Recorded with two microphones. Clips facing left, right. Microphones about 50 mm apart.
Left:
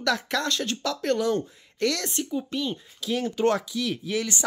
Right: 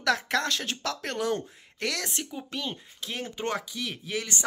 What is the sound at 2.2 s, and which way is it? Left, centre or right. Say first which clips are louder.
Speech: left 6 dB; right.